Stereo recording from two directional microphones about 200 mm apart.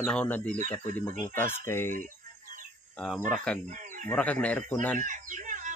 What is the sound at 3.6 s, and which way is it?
Speech, 40° right (ahead or behind).